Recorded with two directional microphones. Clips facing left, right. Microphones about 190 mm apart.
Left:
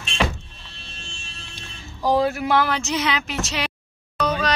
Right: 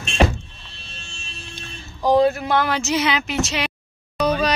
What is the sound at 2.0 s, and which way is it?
Speech, 5° left (ahead or behind).